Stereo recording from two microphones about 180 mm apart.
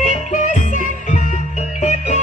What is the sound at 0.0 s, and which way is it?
Music, 45° left (ahead or behind).